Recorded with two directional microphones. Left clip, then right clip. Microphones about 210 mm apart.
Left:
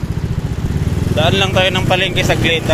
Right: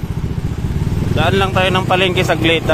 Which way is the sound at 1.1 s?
20° right (ahead or behind).